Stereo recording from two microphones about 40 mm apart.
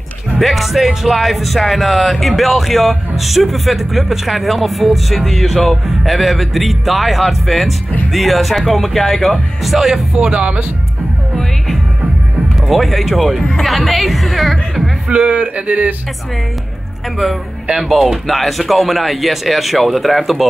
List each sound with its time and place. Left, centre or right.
0.4 s speech: centre
9.7 s speech: centre
10.1 s speech: right
12.6 s speech: centre
13.4 s speech: centre
13.7 s speech: centre
15.0 s speech: right
17.7 s speech: centre